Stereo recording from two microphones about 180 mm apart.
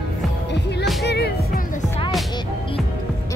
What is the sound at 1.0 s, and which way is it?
Music, 65° left (ahead or behind).